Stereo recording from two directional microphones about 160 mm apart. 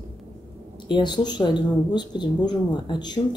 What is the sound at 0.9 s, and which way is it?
Speech, 25° left (ahead or behind).